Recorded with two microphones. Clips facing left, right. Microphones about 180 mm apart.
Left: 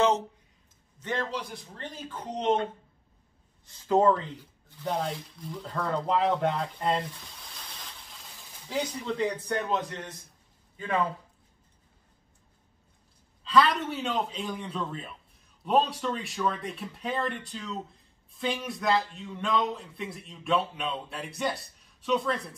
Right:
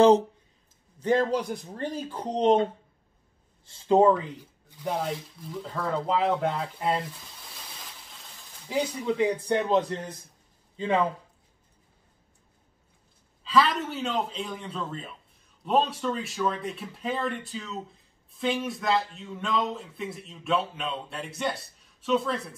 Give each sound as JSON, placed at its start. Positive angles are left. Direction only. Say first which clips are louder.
{"t": 0.9, "sound": "a man's voice", "louder": "right 9 dB", "side_deg": -40}
{"t": 3.6, "sound": "speech", "louder": "right 3 dB", "side_deg": -25}
{"t": 4.0, "sound": "speech", "louder": "right 3 dB", "side_deg": -15}
{"t": 8.6, "sound": "speech", "louder": "right 4 dB", "side_deg": -10}
{"t": 9.5, "sound": "a man's voice", "louder": "right 6 dB", "side_deg": -30}
{"t": 13.4, "sound": "speech", "louder": "even", "side_deg": 0}